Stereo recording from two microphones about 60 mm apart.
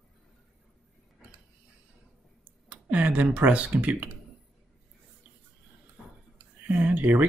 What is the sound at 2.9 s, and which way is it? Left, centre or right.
Speech, right.